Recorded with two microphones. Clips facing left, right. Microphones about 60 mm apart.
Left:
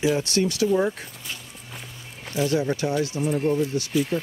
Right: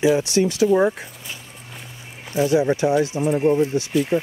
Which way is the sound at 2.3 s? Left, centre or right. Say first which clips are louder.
Right 5 dB; centre.